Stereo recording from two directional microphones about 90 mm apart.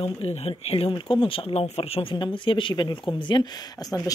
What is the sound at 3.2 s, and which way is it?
Speech, 55° left (ahead or behind).